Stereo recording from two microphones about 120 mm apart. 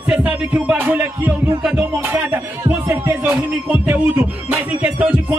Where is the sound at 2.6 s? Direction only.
20° right (ahead or behind).